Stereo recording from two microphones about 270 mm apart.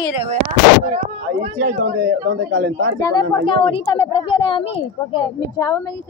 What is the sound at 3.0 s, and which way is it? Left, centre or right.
Speech, centre.